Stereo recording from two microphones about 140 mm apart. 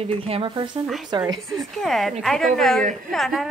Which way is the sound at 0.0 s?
40° right (ahead or behind).